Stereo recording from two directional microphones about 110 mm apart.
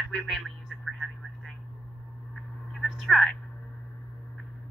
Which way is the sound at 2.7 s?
Centre (ahead or behind).